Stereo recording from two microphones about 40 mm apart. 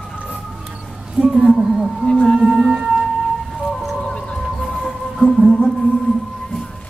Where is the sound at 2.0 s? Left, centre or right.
Centre.